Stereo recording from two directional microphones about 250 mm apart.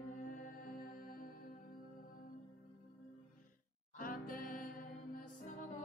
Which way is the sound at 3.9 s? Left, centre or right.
Left.